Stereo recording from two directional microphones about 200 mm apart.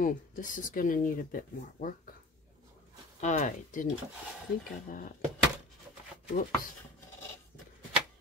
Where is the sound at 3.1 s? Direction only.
35° left (ahead or behind).